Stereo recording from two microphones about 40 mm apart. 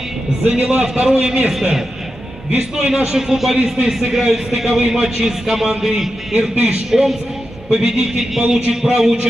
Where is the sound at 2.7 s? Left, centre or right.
Centre.